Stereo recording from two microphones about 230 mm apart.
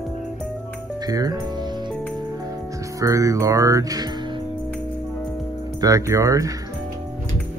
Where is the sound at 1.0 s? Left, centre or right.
Centre.